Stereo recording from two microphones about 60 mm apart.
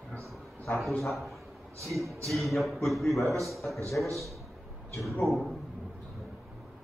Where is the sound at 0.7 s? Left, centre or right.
Centre.